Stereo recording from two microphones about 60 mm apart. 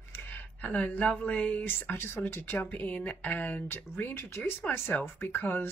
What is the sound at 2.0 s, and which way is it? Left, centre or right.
Speech, left.